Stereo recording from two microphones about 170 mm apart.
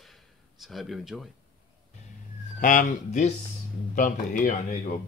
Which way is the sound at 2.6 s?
50° left (ahead or behind).